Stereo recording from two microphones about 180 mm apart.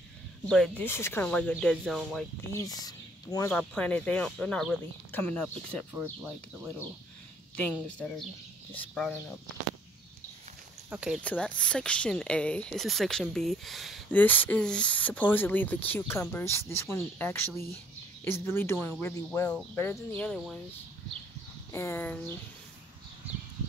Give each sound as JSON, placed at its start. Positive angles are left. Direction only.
{"t": 0.5, "sound": "speech", "side_deg": 5}
{"t": 2.5, "sound": "speech", "side_deg": 20}
{"t": 3.4, "sound": "speech", "side_deg": 10}
{"t": 10.9, "sound": "speech", "side_deg": -5}
{"t": 11.1, "sound": "speech", "side_deg": 5}
{"t": 14.2, "sound": "speech", "side_deg": 10}
{"t": 21.7, "sound": "speech", "side_deg": 15}